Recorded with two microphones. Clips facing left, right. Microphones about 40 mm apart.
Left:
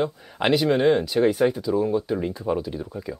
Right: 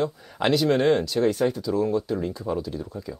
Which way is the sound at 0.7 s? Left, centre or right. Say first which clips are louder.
Left 1 dB; centre.